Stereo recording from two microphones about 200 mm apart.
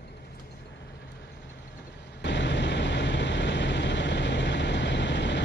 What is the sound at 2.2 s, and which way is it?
Vehicle, 60° left (ahead or behind).